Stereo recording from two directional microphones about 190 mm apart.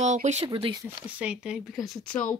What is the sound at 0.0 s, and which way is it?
Speech, 35° right (ahead or behind).